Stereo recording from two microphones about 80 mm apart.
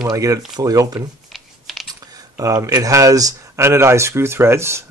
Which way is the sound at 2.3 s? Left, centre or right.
Right.